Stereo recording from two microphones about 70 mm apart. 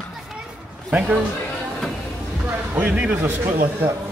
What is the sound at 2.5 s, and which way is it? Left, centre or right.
Speech, right.